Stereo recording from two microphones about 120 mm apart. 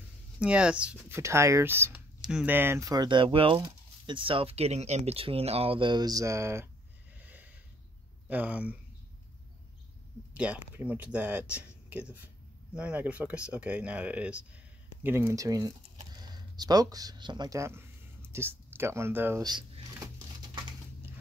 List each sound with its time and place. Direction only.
0.4 s speech: 10° right (ahead or behind)
1.0 s speech: 20° right (ahead or behind)
7.2 s snort: 15° right (ahead or behind)
8.3 s speech: 10° right (ahead or behind)
10.3 s speech: 10° right (ahead or behind); by 17.6 s 35° right (ahead or behind)
17.6 s speech: 20° right (ahead or behind)